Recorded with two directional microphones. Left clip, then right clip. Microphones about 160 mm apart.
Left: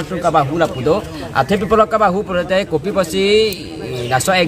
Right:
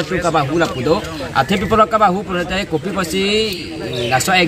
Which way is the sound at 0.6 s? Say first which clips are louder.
Left 1 dB; 35° left (ahead or behind).